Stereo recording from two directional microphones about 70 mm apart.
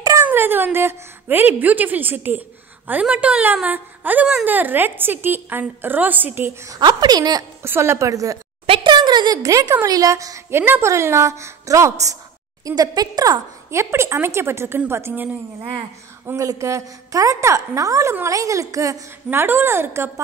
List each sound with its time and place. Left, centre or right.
0.2 s speech: right
6.8 s a woman's voice: right
7.6 s speech: right
8.1 s a woman's voice: right
8.8 s a sound: right
9.4 s a woman's voice: right
10.8 s a woman's voice: right
12.6 s a woman's voice: right
13.7 s speech: right
16.3 s a woman's voice: right
19.3 s speech: right